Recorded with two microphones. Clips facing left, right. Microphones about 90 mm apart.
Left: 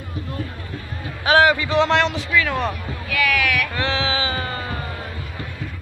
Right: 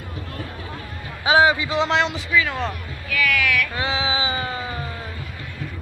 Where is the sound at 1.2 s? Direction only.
20° right (ahead or behind).